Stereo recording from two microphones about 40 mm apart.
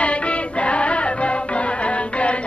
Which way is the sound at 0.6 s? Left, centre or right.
Left.